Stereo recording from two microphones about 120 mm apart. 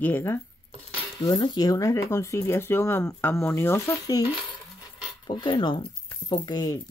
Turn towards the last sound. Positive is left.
turn(degrees=35)  # may be behind; listen again after turning